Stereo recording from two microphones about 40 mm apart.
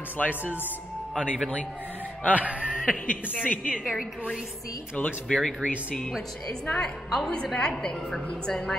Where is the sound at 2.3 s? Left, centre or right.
Right.